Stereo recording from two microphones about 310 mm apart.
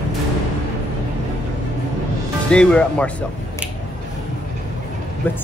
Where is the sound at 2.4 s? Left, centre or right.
Centre.